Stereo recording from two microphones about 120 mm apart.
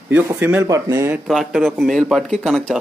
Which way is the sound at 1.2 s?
Centre (ahead or behind).